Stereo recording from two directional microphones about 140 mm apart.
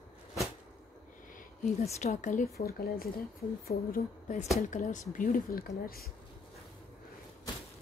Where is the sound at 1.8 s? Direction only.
50° left (ahead or behind); by 3.1 s 75° left (ahead or behind).